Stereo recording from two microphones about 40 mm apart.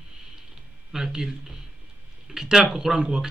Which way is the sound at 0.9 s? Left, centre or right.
Centre.